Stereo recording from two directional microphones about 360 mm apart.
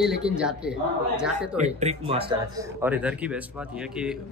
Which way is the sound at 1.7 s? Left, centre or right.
Centre.